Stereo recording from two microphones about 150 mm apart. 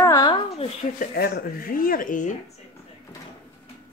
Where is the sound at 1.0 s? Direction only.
85° left; by 2.3 s 65° left (ahead or behind).